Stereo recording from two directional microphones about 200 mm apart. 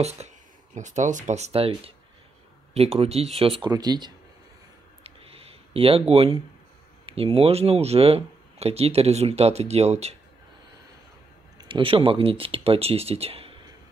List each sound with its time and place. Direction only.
0.2 s a sound: 30° right (ahead or behind)
0.7 s speech: 35° right (ahead or behind); by 4.1 s 20° right (ahead or behind)
5.7 s speech: 30° right (ahead or behind)
11.6 s speech: 25° right (ahead or behind)